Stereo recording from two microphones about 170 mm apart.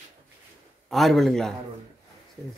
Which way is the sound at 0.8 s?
Centre (ahead or behind).